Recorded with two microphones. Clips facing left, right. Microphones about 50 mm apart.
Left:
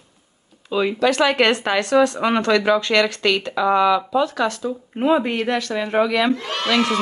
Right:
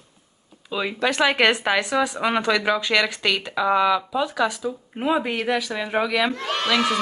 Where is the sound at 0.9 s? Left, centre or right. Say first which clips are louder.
Left 3 dB; right.